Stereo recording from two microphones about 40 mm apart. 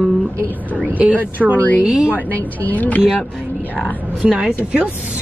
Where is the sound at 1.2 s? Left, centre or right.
Right.